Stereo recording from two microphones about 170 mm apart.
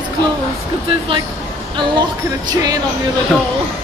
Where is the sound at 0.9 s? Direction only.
30° right (ahead or behind).